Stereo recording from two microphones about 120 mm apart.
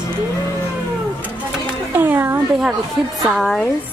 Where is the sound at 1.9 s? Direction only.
15° right (ahead or behind).